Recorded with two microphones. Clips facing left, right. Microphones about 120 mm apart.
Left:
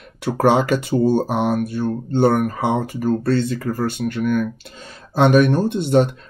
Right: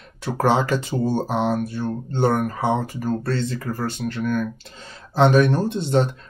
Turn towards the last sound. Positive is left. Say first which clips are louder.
# left 4 dB
turn(degrees=15)  # may be behind; listen again after turning